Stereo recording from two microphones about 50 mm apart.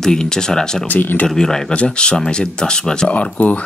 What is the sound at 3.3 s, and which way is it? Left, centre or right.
Speech, left.